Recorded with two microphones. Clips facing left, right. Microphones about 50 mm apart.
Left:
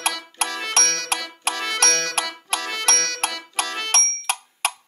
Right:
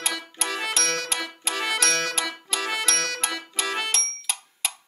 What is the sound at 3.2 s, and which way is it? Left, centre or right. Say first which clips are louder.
Music: left 3 dB; left.